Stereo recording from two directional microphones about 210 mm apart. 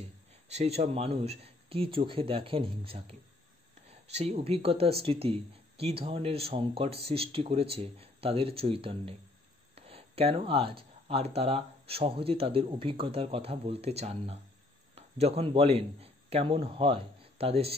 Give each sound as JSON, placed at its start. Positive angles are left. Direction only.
{"t": 0.5, "sound": "speech", "side_deg": -30}